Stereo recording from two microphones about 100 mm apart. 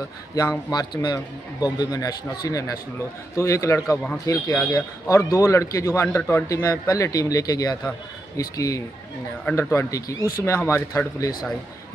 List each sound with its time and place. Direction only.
0.4 s a man's voice: 40° left (ahead or behind)